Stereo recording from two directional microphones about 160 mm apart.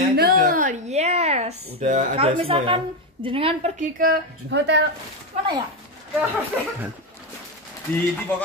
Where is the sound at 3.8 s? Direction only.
65° right (ahead or behind); by 4.8 s 90° right.